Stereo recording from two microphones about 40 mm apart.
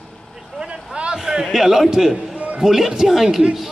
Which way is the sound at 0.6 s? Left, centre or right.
Right.